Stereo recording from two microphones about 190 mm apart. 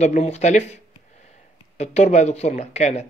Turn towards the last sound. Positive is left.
turn(degrees=35)  # may be behind; listen again after turning